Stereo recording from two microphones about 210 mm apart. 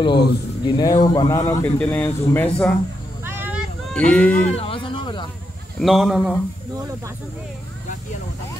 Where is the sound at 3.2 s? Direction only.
10° right (ahead or behind).